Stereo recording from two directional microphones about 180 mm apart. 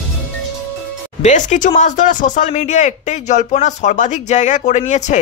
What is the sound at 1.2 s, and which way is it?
Speech, 40° left (ahead or behind).